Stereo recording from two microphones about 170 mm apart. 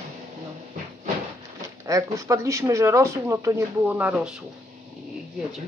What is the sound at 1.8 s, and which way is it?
Speech, 20° right (ahead or behind).